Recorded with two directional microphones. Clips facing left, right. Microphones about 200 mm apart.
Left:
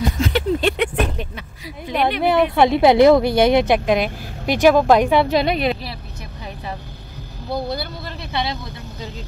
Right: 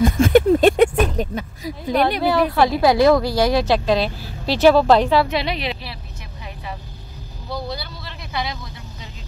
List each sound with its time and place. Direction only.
0.0 s a sound: 50° right (ahead or behind)
2.2 s speech: 20° left (ahead or behind)
5.3 s a woman's voice: 50° left (ahead or behind)
8.3 s speech: 30° left (ahead or behind)